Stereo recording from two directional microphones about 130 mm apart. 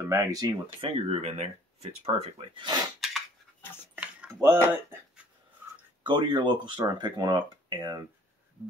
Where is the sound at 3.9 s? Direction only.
10° right (ahead or behind).